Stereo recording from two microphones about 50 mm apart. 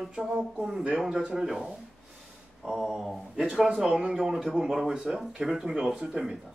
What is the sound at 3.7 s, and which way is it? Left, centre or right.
Speech, centre.